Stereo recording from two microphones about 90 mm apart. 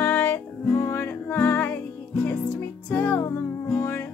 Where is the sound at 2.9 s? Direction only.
25° left (ahead or behind).